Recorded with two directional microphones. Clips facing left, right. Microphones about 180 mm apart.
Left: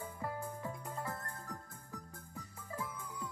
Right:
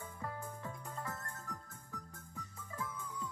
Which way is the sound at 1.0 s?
35° left (ahead or behind).